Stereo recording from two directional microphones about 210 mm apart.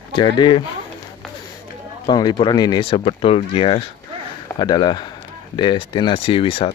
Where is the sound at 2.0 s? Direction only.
20° left (ahead or behind).